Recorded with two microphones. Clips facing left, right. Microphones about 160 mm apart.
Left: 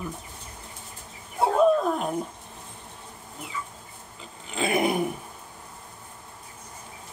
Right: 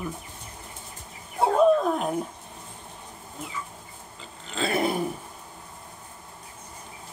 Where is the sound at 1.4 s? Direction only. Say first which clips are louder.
Right 1 dB; centre (ahead or behind).